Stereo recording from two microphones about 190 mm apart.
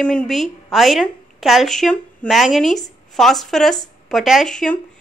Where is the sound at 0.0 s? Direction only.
5° left (ahead or behind).